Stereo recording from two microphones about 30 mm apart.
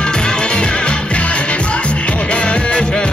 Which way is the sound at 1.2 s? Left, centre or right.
Left.